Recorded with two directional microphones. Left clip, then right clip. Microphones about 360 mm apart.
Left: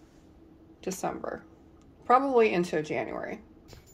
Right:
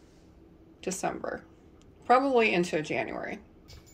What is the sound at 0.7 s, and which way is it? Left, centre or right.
Speech, centre.